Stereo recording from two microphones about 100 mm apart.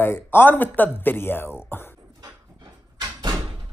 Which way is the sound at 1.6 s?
20° left (ahead or behind).